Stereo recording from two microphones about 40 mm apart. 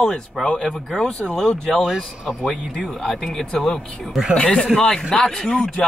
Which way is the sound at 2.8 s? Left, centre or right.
Centre.